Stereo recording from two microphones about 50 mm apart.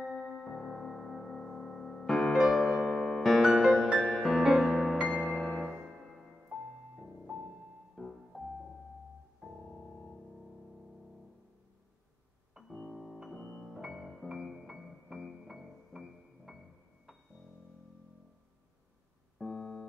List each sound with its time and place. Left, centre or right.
0.0 s music: centre
5.0 s music: left
5.3 s music: centre
5.8 s music: centre
12.7 s keyboard: centre
13.0 s music: centre
13.7 s music: centre
19.3 s music: centre